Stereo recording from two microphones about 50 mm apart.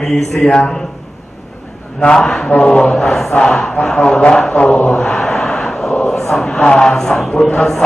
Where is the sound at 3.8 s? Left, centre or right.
Centre.